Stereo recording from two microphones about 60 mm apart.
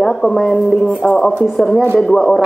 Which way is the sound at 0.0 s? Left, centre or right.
Centre.